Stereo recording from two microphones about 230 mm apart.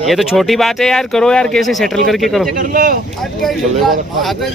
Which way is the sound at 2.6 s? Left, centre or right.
Right.